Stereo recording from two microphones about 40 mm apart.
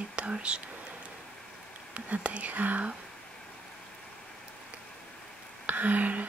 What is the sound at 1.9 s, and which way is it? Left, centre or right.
Speech, right.